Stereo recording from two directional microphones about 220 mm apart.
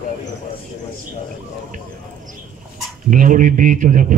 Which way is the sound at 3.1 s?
35° right (ahead or behind).